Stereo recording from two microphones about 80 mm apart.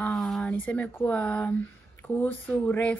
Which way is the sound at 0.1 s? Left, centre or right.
Centre.